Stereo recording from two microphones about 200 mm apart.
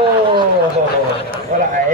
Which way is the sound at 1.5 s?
40° right (ahead or behind).